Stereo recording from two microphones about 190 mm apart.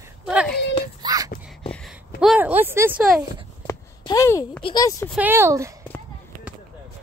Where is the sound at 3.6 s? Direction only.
15° left (ahead or behind).